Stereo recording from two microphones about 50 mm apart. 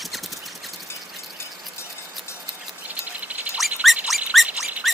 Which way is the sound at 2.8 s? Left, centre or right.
Right.